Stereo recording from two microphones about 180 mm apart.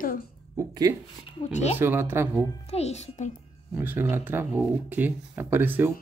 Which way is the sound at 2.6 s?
35° left (ahead or behind).